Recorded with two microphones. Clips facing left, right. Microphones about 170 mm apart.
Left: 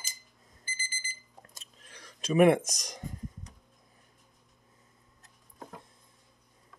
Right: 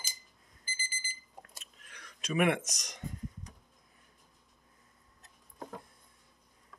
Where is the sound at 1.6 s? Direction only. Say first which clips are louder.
Left 2 dB; 30° left (ahead or behind).